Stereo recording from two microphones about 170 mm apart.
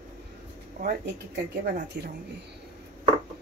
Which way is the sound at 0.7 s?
75° right (ahead or behind).